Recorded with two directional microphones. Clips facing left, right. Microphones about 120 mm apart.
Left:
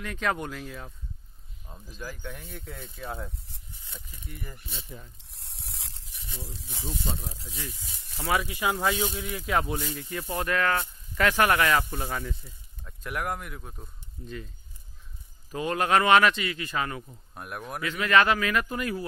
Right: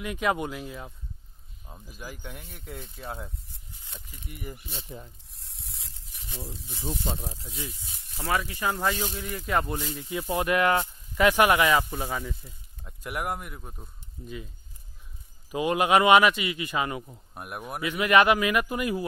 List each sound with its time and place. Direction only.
0.0 s speech: 10° right (ahead or behind)
4.3 s speech: 15° right (ahead or behind)
5.3 s a sound: 70° left (ahead or behind)
8.3 s speech: 10° left (ahead or behind)
10.3 s speech: 15° right (ahead or behind)
12.4 s speech: 15° right (ahead or behind)
15.5 s speech: 15° right (ahead or behind)